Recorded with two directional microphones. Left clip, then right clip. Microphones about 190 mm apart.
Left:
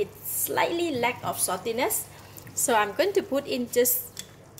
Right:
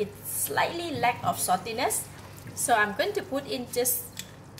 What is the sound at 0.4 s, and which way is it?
A woman's voice, 50° left (ahead or behind).